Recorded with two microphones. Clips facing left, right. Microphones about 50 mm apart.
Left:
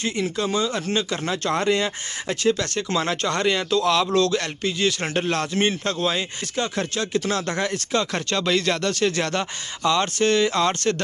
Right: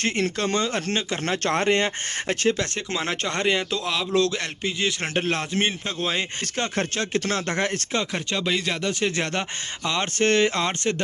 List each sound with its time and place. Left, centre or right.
0.0 s speech: right
5.9 s speech: right
8.0 s speech: centre